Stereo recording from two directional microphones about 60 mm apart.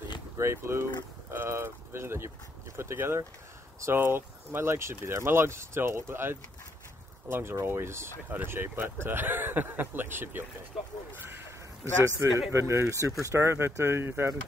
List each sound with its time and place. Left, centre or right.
0.4 s speech: right
11.8 s speech: right